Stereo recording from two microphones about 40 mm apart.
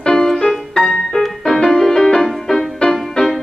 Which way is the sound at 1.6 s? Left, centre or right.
Centre.